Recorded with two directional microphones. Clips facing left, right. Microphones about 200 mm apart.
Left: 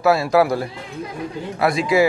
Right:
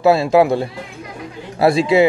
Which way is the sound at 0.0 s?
25° right (ahead or behind).